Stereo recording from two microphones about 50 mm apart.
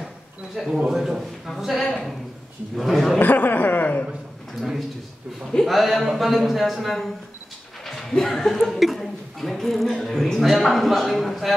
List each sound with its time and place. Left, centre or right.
0.8 s a man's voice: centre
3.2 s speech: left
4.6 s speech: centre